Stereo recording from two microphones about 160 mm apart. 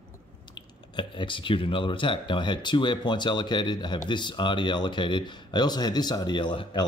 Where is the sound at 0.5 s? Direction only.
30° left (ahead or behind).